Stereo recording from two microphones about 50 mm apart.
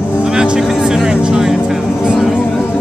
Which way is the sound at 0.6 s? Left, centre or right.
Centre.